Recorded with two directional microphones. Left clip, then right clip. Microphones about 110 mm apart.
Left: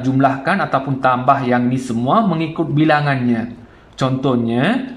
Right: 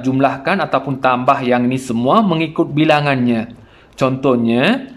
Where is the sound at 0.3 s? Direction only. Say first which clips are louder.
Right 1 dB; 5° right (ahead or behind).